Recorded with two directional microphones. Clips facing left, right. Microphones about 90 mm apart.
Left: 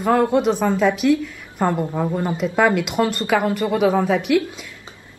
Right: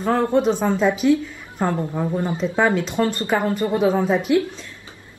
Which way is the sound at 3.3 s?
70° left (ahead or behind).